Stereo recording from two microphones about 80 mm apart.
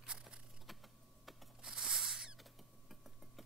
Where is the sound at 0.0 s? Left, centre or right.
Centre.